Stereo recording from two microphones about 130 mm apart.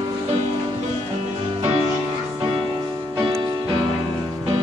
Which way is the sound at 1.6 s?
55° right (ahead or behind).